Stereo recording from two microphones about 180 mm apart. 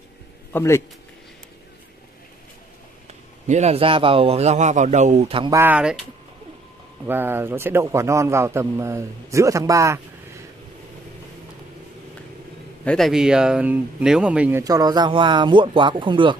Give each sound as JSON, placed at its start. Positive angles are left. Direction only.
{"t": 0.5, "sound": "speech", "side_deg": 15}
{"t": 3.4, "sound": "speech", "side_deg": -40}
{"t": 5.4, "sound": "a man's voice", "side_deg": -15}
{"t": 7.1, "sound": "a man's voice", "side_deg": -10}
{"t": 12.8, "sound": "speech", "side_deg": 0}
{"t": 14.6, "sound": "speech", "side_deg": -20}